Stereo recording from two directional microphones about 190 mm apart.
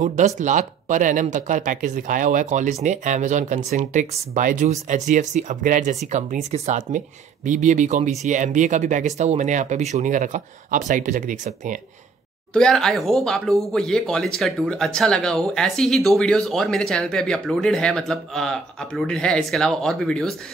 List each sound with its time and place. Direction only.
0.0 s speech: 40° right (ahead or behind)
12.5 s speech: centre (ahead or behind)